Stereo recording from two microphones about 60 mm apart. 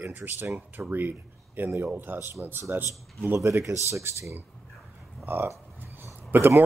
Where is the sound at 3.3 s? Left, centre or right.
Right.